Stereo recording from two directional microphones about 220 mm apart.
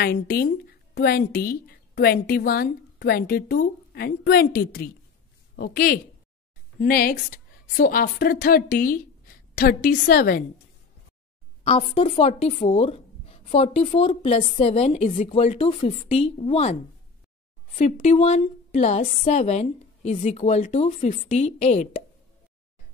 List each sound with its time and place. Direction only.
0.0 s a woman's voice: 45° left (ahead or behind)
11.6 s speech: 30° left (ahead or behind)
17.7 s a woman's voice: 30° left (ahead or behind)